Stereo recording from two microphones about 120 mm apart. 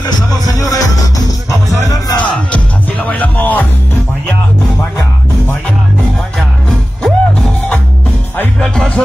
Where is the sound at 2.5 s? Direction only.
15° left (ahead or behind).